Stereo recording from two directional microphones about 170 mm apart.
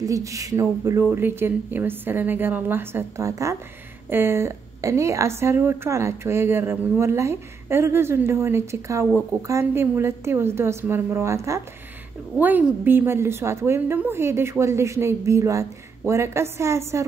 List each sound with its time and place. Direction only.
0.0 s a woman's voice: 20° right (ahead or behind)